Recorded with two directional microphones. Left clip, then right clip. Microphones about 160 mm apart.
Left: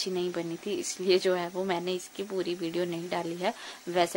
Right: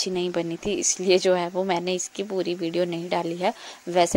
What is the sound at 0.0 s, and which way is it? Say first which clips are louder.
Speech: right 6 dB; 40° right (ahead or behind).